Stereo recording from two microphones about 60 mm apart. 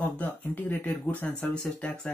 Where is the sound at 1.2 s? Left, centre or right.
Centre.